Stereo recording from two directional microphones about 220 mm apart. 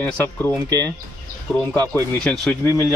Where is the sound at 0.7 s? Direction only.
15° right (ahead or behind).